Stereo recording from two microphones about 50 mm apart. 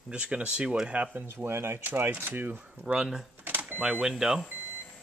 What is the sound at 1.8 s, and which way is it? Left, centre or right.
Speech, right.